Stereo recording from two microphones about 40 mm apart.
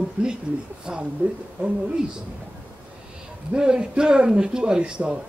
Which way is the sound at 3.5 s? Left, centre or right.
Centre.